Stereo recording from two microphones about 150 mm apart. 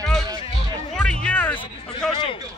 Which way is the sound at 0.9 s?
5° left (ahead or behind).